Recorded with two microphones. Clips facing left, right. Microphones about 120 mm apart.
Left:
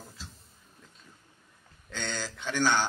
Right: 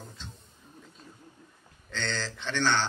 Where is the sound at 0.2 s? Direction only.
5° left (ahead or behind).